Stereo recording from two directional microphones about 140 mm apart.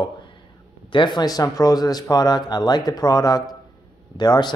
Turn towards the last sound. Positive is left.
turn(degrees=30)  # may be behind; listen again after turning